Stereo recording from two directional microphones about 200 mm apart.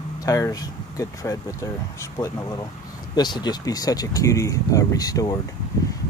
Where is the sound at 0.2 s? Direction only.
15° left (ahead or behind).